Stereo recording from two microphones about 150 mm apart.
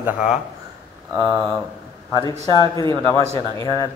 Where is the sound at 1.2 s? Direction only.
25° right (ahead or behind).